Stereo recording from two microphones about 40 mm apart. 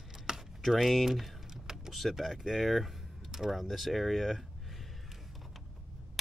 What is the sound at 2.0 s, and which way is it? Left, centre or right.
Speech, centre.